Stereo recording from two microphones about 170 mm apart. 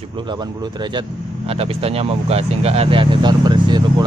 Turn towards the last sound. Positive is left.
turn(degrees=-25)  # may be behind; listen again after turning